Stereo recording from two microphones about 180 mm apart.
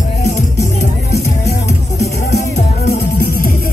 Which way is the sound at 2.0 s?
65° left (ahead or behind).